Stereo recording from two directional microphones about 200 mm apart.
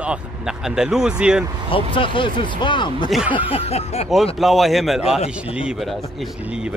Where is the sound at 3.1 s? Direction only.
5° right (ahead or behind).